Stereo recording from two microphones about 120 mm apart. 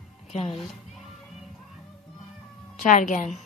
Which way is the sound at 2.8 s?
90° left.